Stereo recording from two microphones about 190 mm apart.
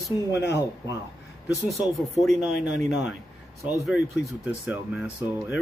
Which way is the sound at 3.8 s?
Centre (ahead or behind).